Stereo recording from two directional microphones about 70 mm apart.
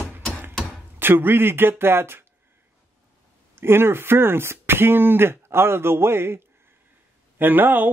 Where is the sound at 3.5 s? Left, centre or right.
Right.